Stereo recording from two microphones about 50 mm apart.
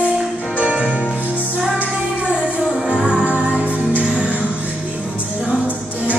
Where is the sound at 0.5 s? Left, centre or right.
Right.